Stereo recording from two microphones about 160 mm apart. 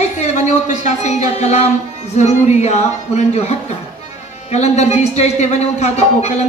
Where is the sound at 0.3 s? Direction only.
45° left (ahead or behind).